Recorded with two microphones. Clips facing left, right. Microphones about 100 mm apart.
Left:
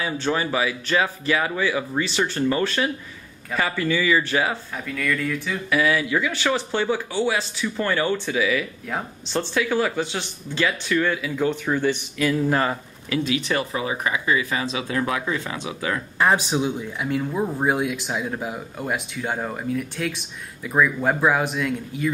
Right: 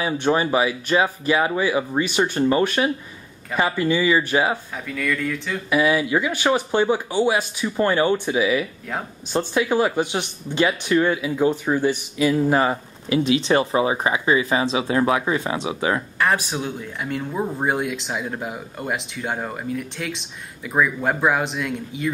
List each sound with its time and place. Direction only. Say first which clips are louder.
0.0 s speech: right 4 dB; 25° right (ahead or behind)
4.8 s speech: right 1 dB; centre (ahead or behind)
5.7 s speech: right 2 dB; 20° right (ahead or behind)
16.2 s speech: left 7 dB; 20° left (ahead or behind)
17.0 s speech: left 1 dB; centre (ahead or behind)